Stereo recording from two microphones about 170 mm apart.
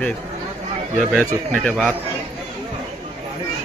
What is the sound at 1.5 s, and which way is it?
Speech, 5° left (ahead or behind).